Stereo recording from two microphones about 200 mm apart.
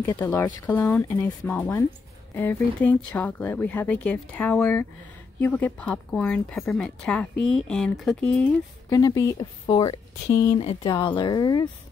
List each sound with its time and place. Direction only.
0.0 s speech: 15° left (ahead or behind)
8.9 s speech: 15° left (ahead or behind)
10.6 s speech: 30° left (ahead or behind)